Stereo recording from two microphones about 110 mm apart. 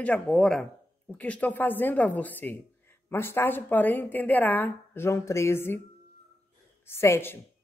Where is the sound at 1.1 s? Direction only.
15° left (ahead or behind).